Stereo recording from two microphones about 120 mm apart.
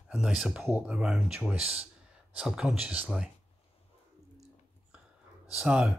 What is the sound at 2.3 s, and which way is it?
Speech, 5° right (ahead or behind).